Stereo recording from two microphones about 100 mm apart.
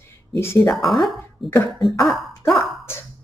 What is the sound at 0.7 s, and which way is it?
Cough, centre (ahead or behind).